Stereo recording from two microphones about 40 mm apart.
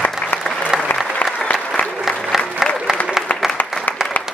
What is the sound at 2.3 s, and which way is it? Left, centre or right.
Applause, centre.